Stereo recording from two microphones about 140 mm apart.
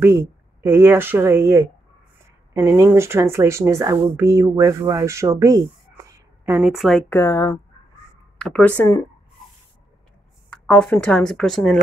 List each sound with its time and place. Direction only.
0.0 s speech: 15° right (ahead or behind)
6.0 s a sound: 20° right (ahead or behind)
6.7 s speech: centre (ahead or behind)
7.1 s speech: 15° left (ahead or behind)
8.4 s speech: 5° left (ahead or behind)
10.5 s speech: 10° left (ahead or behind)